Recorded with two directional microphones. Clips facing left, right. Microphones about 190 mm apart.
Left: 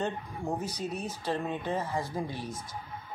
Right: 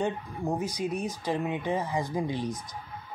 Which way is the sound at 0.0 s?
10° right (ahead or behind).